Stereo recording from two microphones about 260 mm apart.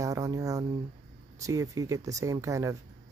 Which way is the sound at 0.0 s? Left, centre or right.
Centre.